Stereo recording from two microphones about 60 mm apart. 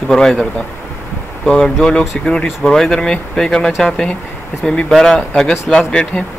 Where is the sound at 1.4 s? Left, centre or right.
Centre.